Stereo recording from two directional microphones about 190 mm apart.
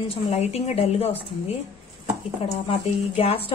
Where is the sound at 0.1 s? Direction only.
35° left (ahead or behind).